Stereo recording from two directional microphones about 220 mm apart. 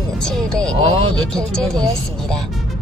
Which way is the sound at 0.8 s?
25° right (ahead or behind).